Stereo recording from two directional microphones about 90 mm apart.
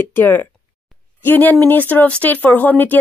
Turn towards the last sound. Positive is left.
turn(degrees=20)  # may be behind; listen again after turning